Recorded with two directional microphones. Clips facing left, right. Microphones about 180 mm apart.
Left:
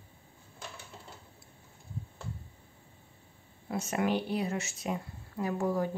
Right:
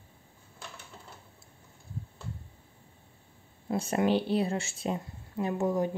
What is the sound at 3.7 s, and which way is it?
Speech, 30° right (ahead or behind).